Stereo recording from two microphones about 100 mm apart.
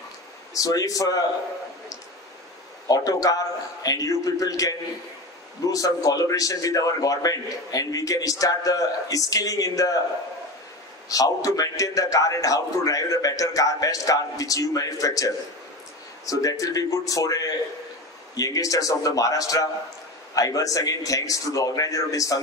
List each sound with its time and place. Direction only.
0.6 s a man's voice: 35° left (ahead or behind)
2.9 s a man's voice: 35° left (ahead or behind)
11.1 s a man's voice: 35° left (ahead or behind)